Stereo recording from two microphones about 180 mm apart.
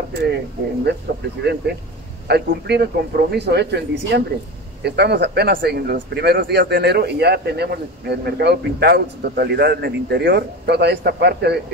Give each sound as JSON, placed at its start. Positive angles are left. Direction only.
{"t": 0.1, "sound": "a man's voice", "side_deg": -70}